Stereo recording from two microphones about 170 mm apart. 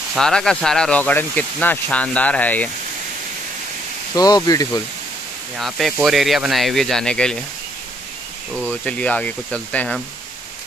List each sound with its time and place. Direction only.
0.1 s speech: 5° left (ahead or behind)
4.1 s speech: 20° left (ahead or behind)
5.6 s speech: centre (ahead or behind)
8.8 s speech: 5° left (ahead or behind)